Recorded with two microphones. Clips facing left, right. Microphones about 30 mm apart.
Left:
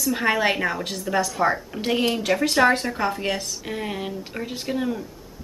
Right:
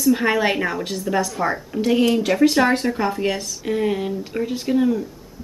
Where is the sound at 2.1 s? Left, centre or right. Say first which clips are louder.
Right 5 dB; centre.